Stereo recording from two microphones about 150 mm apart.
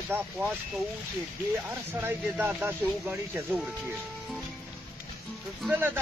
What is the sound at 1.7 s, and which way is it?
Speech, 15° right (ahead or behind).